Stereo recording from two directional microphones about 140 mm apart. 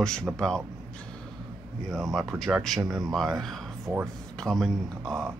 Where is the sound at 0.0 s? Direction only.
5° left (ahead or behind).